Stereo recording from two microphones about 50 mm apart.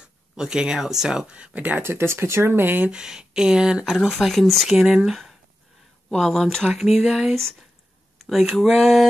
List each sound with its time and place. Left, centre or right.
0.0 s speech: centre
1.3 s speech: right
1.8 s speech: right
2.9 s speech: centre
3.9 s speech: centre
4.7 s speech: centre
6.7 s speech: centre